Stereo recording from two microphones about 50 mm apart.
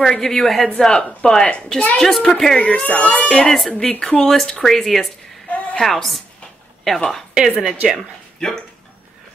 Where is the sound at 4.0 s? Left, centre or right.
Left.